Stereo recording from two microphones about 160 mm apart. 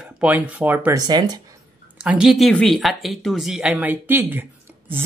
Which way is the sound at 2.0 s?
5° right (ahead or behind).